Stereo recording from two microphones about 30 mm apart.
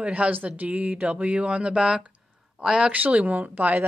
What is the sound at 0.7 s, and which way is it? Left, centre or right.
Mantra, right.